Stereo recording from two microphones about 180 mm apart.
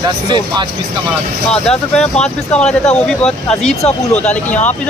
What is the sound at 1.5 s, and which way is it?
Speech, 5° left (ahead or behind).